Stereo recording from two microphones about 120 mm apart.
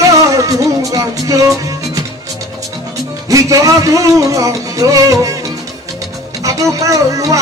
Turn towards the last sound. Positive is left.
turn(degrees=-25)  # may be behind; listen again after turning